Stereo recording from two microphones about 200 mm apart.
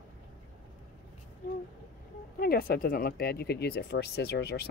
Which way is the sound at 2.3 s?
50° left (ahead or behind).